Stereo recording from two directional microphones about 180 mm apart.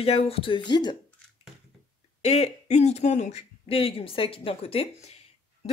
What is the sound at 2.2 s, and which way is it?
Speech, 35° left (ahead or behind).